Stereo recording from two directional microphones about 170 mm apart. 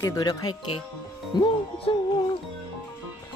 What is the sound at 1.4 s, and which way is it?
Music, 30° left (ahead or behind).